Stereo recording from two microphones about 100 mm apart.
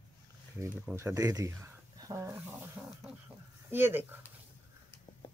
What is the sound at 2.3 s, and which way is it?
Dog, 15° right (ahead or behind).